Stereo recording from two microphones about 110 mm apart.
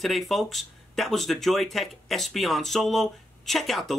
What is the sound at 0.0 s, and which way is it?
Speech, centre (ahead or behind).